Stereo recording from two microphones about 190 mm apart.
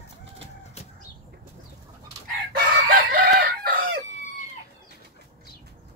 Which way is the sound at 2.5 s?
50° right (ahead or behind).